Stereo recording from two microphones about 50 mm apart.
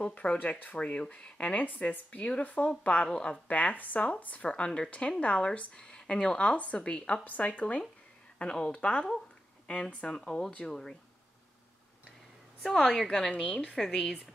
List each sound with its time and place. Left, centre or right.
0.1 s speech: left
0.7 s a woman's voice: left
12.9 s a woman's voice: centre